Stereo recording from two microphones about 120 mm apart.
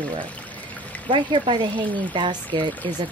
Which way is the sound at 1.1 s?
40° right (ahead or behind).